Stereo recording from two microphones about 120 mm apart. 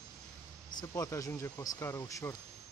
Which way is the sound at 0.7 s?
35° left (ahead or behind).